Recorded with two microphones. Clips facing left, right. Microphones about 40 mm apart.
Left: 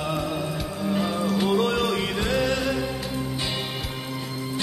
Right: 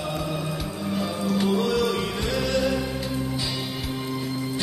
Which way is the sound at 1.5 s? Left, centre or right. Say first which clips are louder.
Even; left.